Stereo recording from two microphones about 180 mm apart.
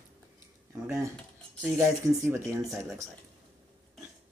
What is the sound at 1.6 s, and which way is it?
Speech, 15° right (ahead or behind).